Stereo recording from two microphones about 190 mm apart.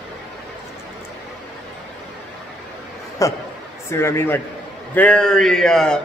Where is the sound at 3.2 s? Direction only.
15° left (ahead or behind).